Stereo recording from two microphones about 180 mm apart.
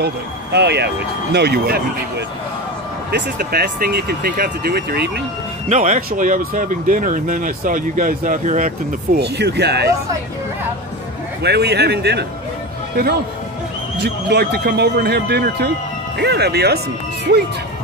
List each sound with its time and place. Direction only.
0.0 s speech: 65° right (ahead or behind)
5.7 s speech: 45° right (ahead or behind)
9.2 s speech: 65° right (ahead or behind)
11.4 s speech: 65° right (ahead or behind)
14.0 s speech: 65° right (ahead or behind)